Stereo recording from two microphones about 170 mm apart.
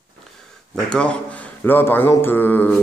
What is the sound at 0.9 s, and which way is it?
A man's voice, 5° left (ahead or behind).